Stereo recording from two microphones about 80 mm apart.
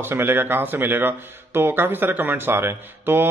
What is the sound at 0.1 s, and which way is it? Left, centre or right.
Speech, right.